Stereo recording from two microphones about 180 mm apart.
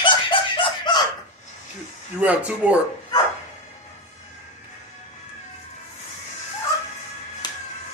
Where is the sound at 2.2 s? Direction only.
10° right (ahead or behind).